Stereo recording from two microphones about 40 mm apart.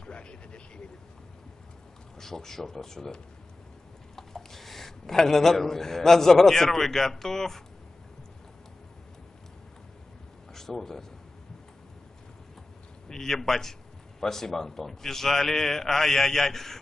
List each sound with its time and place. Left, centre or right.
0.0 s vehicle: left
2.1 s a man's voice: centre
10.5 s speech: centre
13.1 s a man's voice: centre